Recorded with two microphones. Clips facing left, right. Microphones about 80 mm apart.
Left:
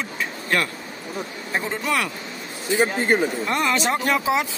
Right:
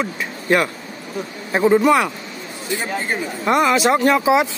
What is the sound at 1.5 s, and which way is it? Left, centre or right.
Speech, centre.